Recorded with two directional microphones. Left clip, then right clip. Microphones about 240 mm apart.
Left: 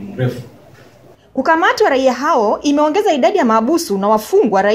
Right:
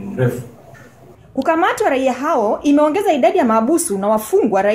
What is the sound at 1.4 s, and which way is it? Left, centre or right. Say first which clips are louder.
Speech: left 3 dB; centre.